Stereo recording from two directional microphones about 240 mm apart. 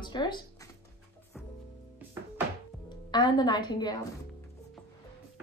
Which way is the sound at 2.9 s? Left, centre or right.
Centre.